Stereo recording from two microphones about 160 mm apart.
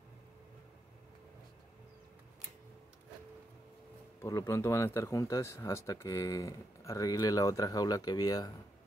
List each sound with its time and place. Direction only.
4.2 s speech: 15° left (ahead or behind)